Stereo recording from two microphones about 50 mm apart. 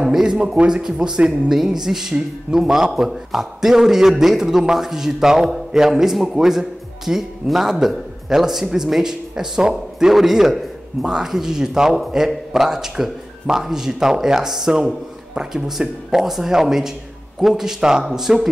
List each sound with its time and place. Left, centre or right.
0.0 s a man's voice: centre